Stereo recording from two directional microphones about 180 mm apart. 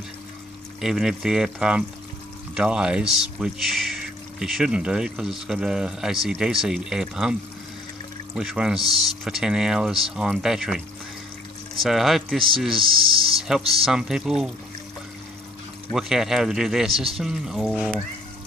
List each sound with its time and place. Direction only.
0.7 s speech: 5° right (ahead or behind)
8.4 s speech: 5° right (ahead or behind)
11.8 s speech: centre (ahead or behind)
12.7 s speech: 30° right (ahead or behind)
13.4 s speech: 5° right (ahead or behind)
15.9 s speech: centre (ahead or behind)